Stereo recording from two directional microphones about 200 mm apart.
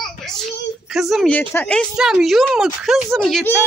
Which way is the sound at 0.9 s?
Centre (ahead or behind).